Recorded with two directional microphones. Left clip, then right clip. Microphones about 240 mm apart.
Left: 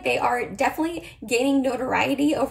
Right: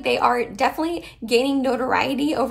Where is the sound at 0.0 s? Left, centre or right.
Centre.